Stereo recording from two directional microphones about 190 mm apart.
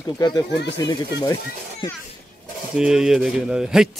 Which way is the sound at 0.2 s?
20° left (ahead or behind).